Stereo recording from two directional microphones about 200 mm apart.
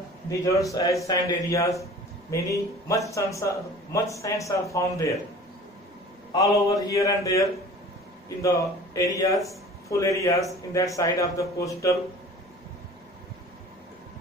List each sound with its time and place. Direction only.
0.3 s speech: 15° left (ahead or behind)
6.3 s speech: 15° left (ahead or behind)